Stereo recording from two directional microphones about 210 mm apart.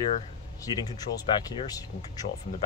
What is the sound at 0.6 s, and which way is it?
Speech, 20° left (ahead or behind).